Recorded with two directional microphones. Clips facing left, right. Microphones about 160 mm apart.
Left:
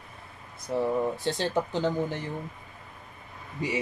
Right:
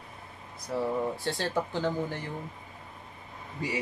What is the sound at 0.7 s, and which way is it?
Speech, 20° left (ahead or behind).